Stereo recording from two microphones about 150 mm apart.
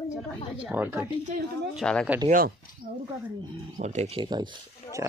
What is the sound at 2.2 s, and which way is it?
Speech, 70° right (ahead or behind).